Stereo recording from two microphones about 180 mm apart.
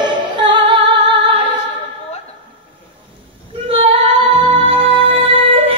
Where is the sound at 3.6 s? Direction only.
30° right (ahead or behind).